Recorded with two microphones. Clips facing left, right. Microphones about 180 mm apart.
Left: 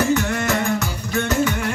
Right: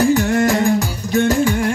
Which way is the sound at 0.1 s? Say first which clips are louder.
Right 5 dB; 35° right (ahead or behind).